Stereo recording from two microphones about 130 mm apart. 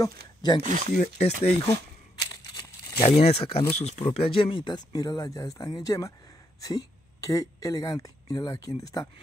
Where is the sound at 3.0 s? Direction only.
55° left (ahead or behind); by 9.1 s 30° left (ahead or behind).